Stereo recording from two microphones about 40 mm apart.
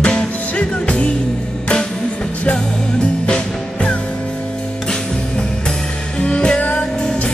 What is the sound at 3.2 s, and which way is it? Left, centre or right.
Music, left.